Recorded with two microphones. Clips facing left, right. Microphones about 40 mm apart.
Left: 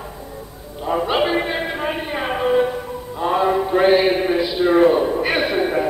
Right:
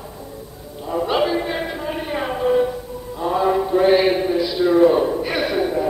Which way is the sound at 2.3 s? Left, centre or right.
Left.